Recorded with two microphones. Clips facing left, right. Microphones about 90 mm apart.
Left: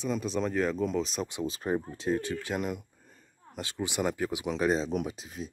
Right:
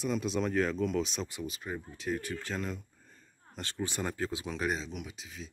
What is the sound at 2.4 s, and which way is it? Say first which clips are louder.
Speech: left 4 dB; 15° left (ahead or behind).